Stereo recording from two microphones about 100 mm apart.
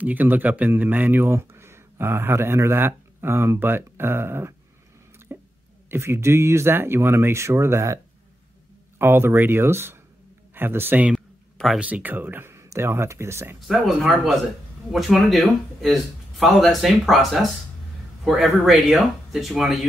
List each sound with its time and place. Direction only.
0.0 s speech: 15° right (ahead or behind)
5.3 s a sound: 20° right (ahead or behind)
5.9 s speech: 25° right (ahead or behind)
11.1 s a sound: centre (ahead or behind)
11.8 s speech: 15° right (ahead or behind)
13.6 s speech: centre (ahead or behind)